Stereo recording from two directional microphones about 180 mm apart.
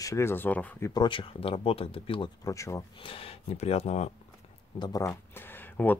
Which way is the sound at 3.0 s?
30° left (ahead or behind).